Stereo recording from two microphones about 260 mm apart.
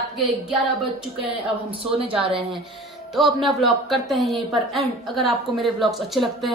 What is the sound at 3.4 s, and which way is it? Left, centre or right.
A woman's voice, centre.